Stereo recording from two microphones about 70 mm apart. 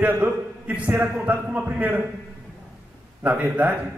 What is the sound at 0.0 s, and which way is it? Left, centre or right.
A man's voice, right.